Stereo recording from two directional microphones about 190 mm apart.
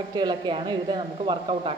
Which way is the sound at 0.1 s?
25° right (ahead or behind).